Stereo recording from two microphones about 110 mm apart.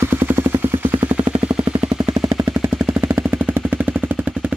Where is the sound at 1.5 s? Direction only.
60° right (ahead or behind).